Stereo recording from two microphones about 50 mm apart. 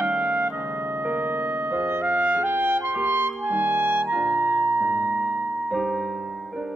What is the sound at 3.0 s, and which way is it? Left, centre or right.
Clarinet, right.